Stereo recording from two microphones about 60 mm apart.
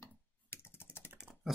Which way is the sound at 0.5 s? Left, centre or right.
Left.